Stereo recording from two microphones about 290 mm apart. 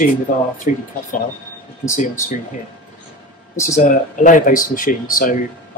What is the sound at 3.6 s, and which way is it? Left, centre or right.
Speech, left.